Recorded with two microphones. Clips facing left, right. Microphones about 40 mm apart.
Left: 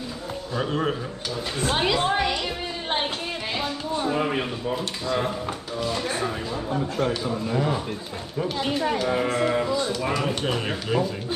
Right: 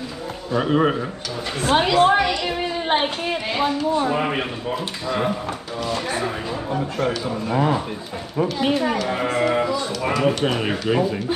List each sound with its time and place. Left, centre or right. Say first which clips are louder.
0.5 s speech: right 7 dB; right
2.0 s speech: right 6 dB; right
2.9 s speech: right 5 dB; right
7.5 s speech: right 6 dB; right
8.5 s speech: right 4 dB; centre
9.1 s speech: right 1 dB; right
10.2 s speech: right 6 dB; right